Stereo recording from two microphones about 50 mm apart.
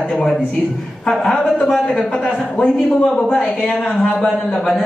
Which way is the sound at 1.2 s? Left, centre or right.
Centre.